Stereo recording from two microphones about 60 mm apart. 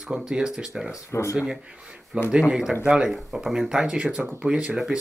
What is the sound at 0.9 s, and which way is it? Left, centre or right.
Speech, left.